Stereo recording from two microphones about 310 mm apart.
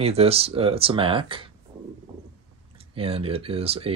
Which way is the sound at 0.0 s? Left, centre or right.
Centre.